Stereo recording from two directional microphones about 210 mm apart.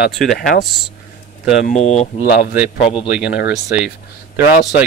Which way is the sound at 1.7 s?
30° left (ahead or behind).